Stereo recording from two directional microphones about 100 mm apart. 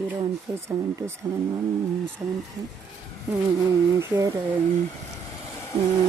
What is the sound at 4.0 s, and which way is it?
Speech, 35° right (ahead or behind).